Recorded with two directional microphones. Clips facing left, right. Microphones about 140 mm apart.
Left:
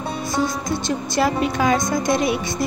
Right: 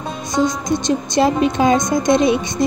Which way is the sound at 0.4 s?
20° right (ahead or behind).